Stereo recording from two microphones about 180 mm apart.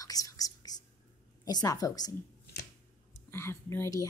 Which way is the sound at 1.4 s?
20° left (ahead or behind).